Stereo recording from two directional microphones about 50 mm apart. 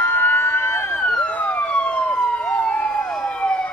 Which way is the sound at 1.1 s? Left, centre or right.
Left.